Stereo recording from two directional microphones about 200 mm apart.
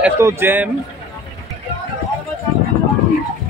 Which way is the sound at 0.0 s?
10° right (ahead or behind).